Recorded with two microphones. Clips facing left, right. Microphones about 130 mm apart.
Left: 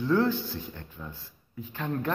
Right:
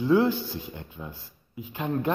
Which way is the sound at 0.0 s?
15° right (ahead or behind).